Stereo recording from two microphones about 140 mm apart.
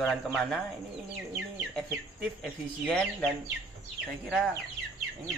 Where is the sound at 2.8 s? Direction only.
10° left (ahead or behind).